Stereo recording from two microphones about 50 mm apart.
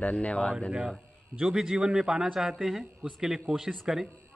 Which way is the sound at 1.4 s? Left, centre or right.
Centre.